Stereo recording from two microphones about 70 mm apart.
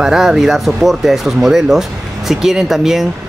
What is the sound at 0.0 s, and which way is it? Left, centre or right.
Speech, centre.